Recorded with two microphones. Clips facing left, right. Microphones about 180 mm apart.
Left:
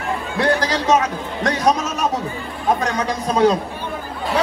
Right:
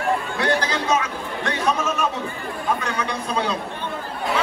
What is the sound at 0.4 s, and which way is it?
Chatter, 35° left (ahead or behind).